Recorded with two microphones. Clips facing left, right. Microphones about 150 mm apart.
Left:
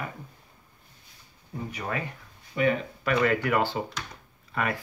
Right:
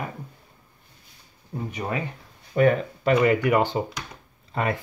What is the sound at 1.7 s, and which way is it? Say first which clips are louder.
Speech: right 3 dB; 20° right (ahead or behind).